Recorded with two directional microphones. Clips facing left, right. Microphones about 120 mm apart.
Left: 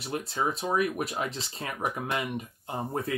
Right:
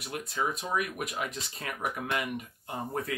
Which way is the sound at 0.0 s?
30° left (ahead or behind).